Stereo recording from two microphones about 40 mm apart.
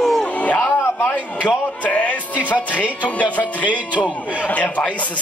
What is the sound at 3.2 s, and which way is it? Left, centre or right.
Music, left.